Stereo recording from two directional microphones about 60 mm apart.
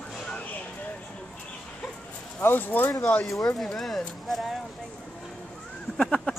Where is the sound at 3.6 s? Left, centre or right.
Centre.